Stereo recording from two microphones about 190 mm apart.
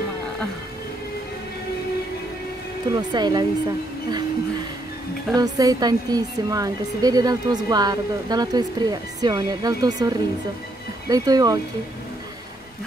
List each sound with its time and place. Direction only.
2.9 s a woman's voice: 20° right (ahead or behind)
5.3 s a woman's voice: 20° right (ahead or behind)